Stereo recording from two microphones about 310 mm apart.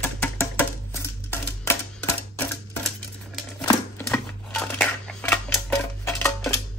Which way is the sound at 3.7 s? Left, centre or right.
Centre.